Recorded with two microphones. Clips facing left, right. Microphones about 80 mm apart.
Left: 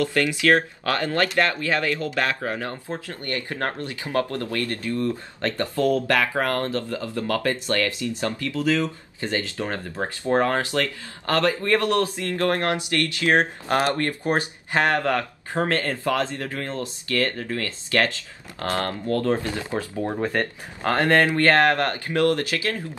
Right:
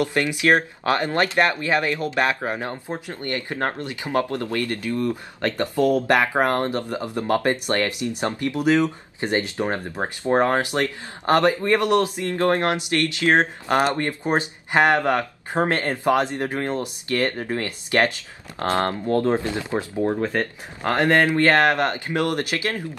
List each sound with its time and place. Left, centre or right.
0.0 s speech: right
20.3 s speech: centre; by 22.8 s right